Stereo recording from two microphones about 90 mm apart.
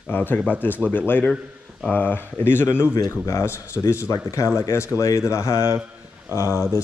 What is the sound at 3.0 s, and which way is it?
Speech, 40° left (ahead or behind).